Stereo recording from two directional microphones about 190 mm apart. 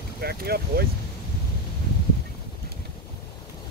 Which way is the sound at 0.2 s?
55° right (ahead or behind).